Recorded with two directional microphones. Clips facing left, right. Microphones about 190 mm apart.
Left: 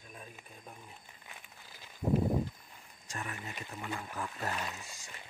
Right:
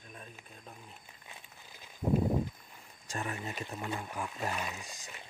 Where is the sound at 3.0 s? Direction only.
30° right (ahead or behind).